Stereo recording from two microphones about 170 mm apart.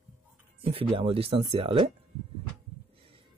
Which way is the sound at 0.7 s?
35° right (ahead or behind).